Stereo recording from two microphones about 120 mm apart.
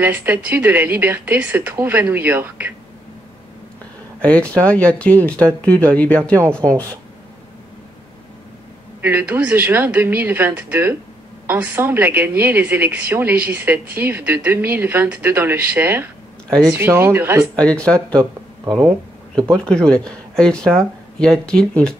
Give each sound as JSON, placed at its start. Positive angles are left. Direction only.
{"t": 0.0, "sound": "a woman's voice", "side_deg": -15}
{"t": 4.2, "sound": "speech", "side_deg": 10}
{"t": 9.0, "sound": "a woman's voice", "side_deg": -15}
{"t": 17.6, "sound": "speech", "side_deg": 10}
{"t": 19.5, "sound": "speech", "side_deg": 5}